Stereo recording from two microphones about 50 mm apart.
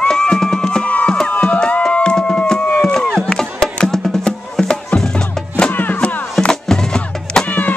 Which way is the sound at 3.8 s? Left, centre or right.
Centre.